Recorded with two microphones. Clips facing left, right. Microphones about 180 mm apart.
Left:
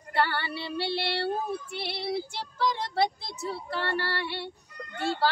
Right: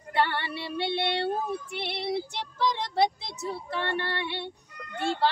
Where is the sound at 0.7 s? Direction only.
20° right (ahead or behind).